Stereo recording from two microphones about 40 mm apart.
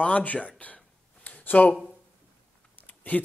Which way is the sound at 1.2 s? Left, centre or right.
Left.